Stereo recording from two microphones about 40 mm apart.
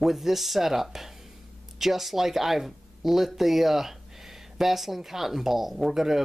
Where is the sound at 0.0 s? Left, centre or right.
Centre.